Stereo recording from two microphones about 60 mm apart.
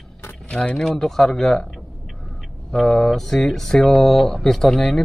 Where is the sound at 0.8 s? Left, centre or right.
Centre.